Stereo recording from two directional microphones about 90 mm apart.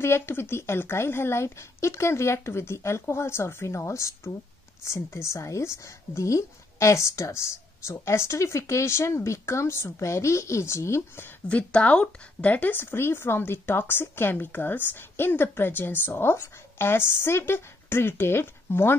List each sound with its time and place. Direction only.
0.0 s speech: 30° left (ahead or behind)
11.4 s speech: 15° left (ahead or behind)